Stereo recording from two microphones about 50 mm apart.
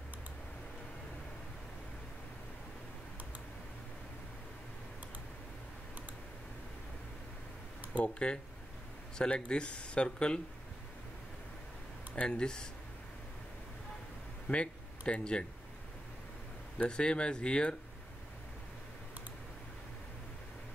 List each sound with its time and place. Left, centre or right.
8.0 s speech: left
12.2 s speech: centre
14.5 s speech: left
16.7 s speech: left